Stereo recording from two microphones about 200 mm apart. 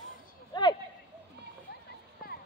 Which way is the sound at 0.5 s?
20° left (ahead or behind).